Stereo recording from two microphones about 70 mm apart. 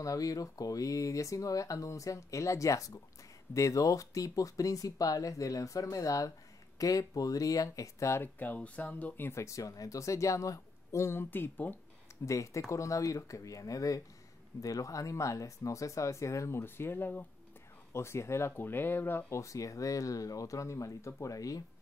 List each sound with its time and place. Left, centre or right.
0.0 s speech: left
8.2 s speech: left
9.4 s speech: left
12.3 s speech: left
19.4 s speech: left